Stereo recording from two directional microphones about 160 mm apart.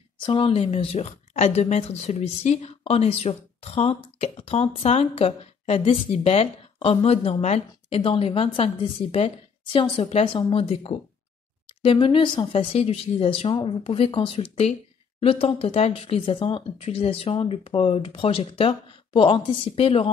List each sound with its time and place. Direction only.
0.2 s a woman's voice: 35° left (ahead or behind)